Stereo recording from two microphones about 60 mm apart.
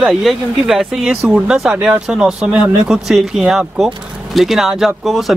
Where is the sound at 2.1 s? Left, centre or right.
Centre.